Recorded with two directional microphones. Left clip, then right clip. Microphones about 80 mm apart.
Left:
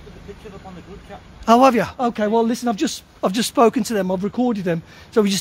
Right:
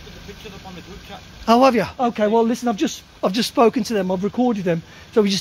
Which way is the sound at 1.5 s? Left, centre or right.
Left.